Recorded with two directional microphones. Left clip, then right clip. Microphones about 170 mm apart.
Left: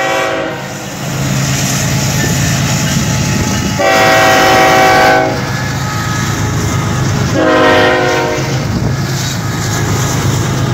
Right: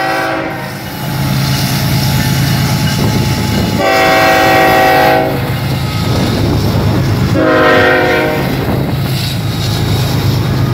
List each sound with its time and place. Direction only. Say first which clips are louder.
3.8 s train: left 1 dB; centre (ahead or behind)
7.3 s train: even; 55° right (ahead or behind)